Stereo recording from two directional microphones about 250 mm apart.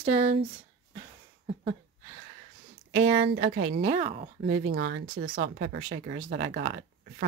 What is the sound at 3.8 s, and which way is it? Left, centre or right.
Speech, right.